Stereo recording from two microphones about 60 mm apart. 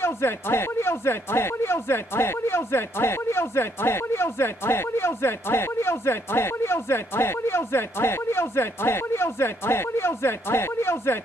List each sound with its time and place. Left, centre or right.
0.0 s speech: left